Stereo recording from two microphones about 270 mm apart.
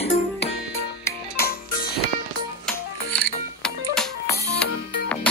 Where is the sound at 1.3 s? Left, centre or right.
Left.